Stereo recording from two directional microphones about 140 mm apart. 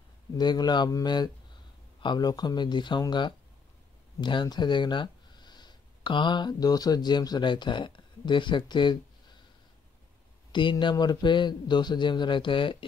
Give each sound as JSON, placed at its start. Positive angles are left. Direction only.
{"t": 0.4, "sound": "speech", "side_deg": 30}
{"t": 10.5, "sound": "a man's voice", "side_deg": 35}